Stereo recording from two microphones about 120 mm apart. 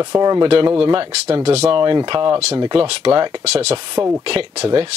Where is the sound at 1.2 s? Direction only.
55° right (ahead or behind).